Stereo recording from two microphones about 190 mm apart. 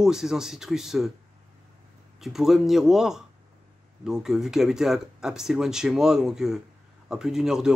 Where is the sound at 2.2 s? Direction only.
Centre (ahead or behind).